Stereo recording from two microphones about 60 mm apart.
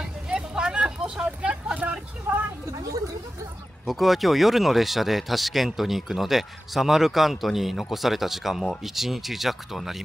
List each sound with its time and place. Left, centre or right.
0.0 s vehicle: centre
3.8 s speech: centre